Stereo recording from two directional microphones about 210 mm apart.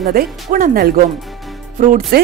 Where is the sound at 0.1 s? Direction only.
45° right (ahead or behind).